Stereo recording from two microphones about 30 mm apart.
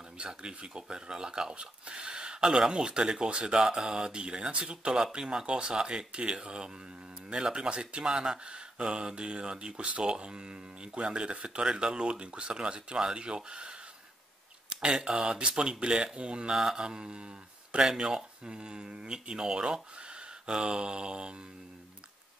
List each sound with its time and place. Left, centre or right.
0.2 s speech: right
5.1 s speech: right
15.0 s speech: centre
15.3 s speech: right
20.0 s mantra: right